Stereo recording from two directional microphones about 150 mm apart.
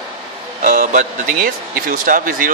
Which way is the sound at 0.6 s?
50° right (ahead or behind).